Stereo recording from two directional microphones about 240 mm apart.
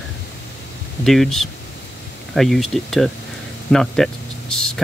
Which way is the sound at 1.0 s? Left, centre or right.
Centre.